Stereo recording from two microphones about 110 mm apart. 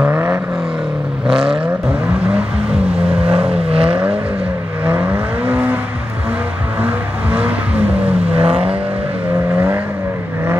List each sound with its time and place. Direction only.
0.0 s vehicle: 20° right (ahead or behind)
1.3 s vehicle: 55° right (ahead or behind)
3.3 s vehicle: 10° right (ahead or behind)
3.7 s vehicle: 60° right (ahead or behind)
4.8 s vehicle: 15° right (ahead or behind)
6.8 s vehicle: 15° right (ahead or behind)
8.4 s vehicle: 60° right (ahead or behind)